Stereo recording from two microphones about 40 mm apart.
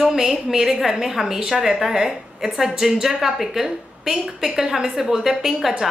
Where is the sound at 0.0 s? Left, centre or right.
Centre.